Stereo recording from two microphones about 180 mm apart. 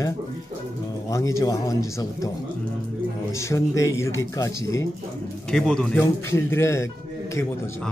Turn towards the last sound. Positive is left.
turn(degrees=15)  # may be behind; listen again after turning